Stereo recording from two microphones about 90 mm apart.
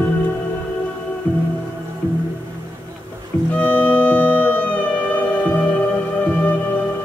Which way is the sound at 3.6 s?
15° left (ahead or behind).